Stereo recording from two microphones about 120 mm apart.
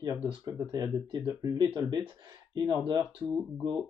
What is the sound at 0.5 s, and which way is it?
Speech, 30° right (ahead or behind).